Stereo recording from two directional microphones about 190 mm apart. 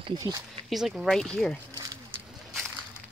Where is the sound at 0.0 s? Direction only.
20° right (ahead or behind).